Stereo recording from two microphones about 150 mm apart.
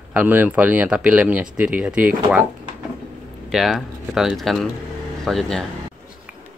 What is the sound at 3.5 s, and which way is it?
Speech, centre (ahead or behind).